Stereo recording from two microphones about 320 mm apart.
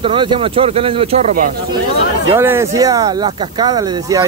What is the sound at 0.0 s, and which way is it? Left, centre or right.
Speech, centre.